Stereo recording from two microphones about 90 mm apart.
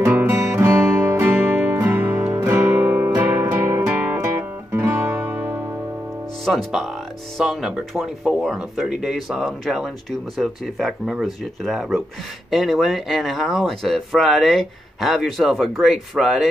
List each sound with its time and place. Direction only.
0.0 s music: 25° right (ahead or behind)
6.4 s music: centre (ahead or behind)
7.3 s speech: 5° right (ahead or behind)